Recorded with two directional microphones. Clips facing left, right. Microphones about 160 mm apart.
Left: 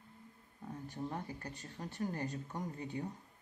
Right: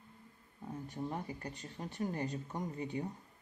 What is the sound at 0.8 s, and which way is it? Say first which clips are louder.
Speech: right 1 dB; 15° right (ahead or behind).